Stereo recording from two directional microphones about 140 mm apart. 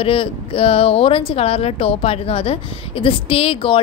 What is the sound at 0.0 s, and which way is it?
Speech, 40° left (ahead or behind).